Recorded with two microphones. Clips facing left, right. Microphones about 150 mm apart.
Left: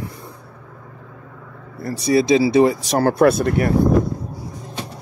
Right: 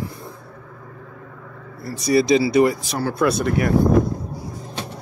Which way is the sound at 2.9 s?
45° left (ahead or behind).